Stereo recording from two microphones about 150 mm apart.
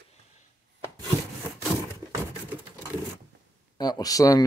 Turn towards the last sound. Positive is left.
turn(degrees=25)  # may be behind; listen again after turning